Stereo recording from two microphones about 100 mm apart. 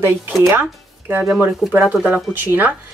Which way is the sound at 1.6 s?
5° right (ahead or behind).